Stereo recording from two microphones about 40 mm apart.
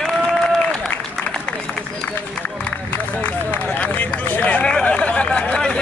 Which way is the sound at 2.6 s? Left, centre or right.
Left.